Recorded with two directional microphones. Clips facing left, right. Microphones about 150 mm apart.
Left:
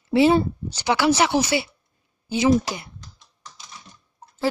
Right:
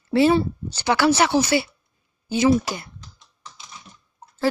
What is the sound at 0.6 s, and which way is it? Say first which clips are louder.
Speech: right 3 dB; 15° left (ahead or behind).